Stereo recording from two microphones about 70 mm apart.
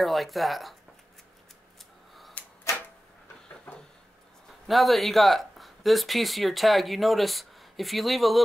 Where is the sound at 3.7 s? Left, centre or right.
Centre.